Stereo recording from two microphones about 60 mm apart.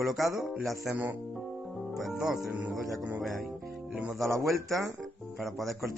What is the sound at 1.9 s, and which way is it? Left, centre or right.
Music, centre.